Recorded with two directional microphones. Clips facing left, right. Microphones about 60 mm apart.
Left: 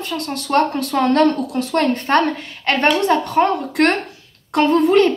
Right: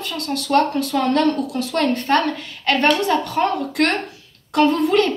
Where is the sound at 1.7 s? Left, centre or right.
Left.